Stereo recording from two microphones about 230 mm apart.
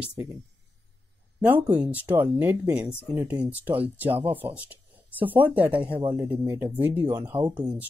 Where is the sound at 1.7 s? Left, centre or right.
Centre.